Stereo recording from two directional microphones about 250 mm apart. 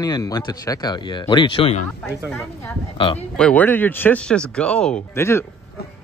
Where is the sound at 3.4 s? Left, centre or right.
Centre.